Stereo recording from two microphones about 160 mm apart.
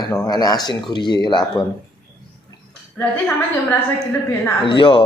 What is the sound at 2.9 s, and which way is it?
Speech, 10° left (ahead or behind).